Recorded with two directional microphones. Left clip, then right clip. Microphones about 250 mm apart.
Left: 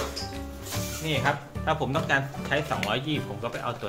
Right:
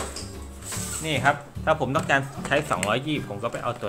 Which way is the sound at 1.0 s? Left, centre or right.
Right.